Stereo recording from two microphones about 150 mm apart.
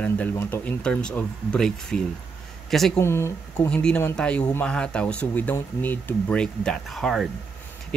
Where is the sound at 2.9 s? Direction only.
15° left (ahead or behind).